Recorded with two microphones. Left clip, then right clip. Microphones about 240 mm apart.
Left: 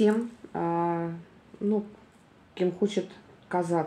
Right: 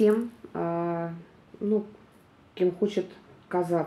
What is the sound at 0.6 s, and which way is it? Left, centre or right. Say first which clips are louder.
Music: left 1 dB; left.